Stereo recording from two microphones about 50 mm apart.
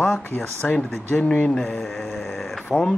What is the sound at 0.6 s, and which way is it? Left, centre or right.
Speech, centre.